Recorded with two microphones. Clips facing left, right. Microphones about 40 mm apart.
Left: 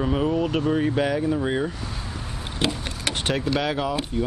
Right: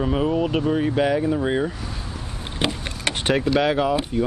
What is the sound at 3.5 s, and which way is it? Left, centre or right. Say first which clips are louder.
Speech: right 6 dB; centre.